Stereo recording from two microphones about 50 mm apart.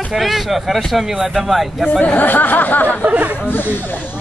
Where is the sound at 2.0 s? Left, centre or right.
Left.